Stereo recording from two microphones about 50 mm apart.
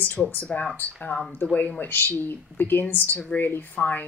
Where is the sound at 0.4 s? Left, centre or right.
Left.